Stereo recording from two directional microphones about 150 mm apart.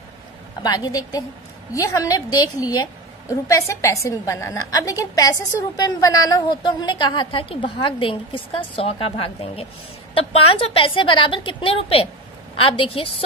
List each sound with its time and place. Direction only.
0.6 s a woman's voice: 25° left (ahead or behind)